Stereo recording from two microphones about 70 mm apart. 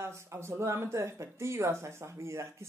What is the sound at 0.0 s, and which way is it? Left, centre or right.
Speech, right.